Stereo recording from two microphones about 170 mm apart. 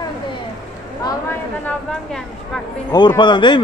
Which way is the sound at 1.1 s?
15° left (ahead or behind).